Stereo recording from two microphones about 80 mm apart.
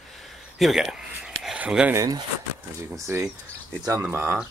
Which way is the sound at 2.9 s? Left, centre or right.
Right.